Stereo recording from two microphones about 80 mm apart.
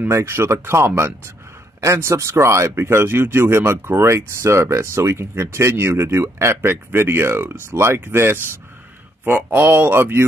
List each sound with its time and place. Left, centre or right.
0.1 s speech: right